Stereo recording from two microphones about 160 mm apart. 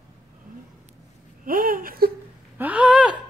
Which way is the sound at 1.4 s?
60° right (ahead or behind).